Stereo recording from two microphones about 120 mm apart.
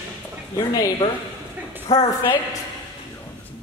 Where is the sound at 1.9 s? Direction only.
55° left (ahead or behind).